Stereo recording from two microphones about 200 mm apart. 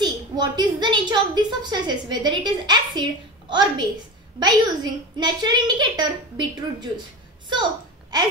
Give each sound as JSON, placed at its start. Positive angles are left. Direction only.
{"t": 0.0, "sound": "a woman's voice", "side_deg": -20}